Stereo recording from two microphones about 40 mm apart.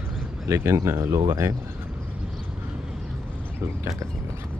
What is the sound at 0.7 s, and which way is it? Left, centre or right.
Speech, right.